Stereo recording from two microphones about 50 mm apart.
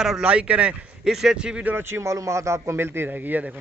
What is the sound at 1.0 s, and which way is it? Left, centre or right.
Speech, centre.